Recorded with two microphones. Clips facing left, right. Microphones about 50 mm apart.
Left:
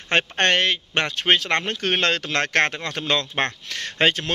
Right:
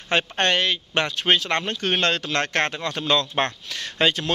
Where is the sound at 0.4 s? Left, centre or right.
Left.